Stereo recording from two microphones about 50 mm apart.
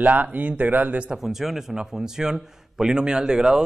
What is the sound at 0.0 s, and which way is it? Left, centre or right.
Speech, right.